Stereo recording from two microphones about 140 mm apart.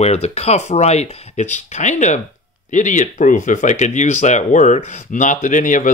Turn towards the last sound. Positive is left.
turn(degrees=65)  # may be behind; listen again after turning